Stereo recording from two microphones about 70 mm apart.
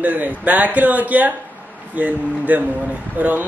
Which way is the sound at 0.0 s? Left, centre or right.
Right.